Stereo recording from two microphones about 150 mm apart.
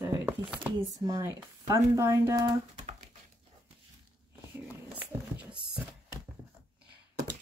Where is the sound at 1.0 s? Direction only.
20° right (ahead or behind).